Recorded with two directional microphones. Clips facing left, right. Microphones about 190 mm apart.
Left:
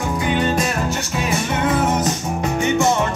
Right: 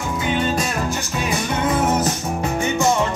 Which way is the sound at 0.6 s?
Centre (ahead or behind).